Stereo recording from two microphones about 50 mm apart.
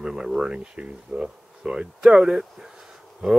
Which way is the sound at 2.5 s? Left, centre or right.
Centre.